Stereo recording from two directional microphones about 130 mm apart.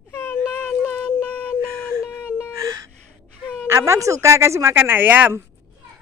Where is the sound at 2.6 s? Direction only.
25° right (ahead or behind).